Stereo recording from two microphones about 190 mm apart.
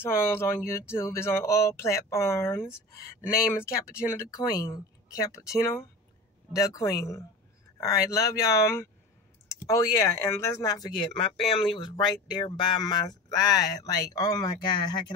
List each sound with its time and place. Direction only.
0.0 s speech: 10° left (ahead or behind)